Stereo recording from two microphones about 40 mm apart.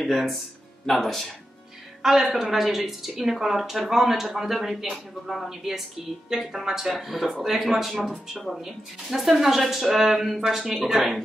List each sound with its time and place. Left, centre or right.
0.0 s speech: centre
10.9 s speech: centre